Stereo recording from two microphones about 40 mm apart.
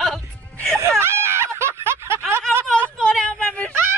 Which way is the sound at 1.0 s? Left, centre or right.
Right.